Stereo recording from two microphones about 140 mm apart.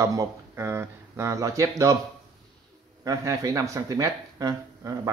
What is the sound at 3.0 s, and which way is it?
A man's voice, 25° right (ahead or behind).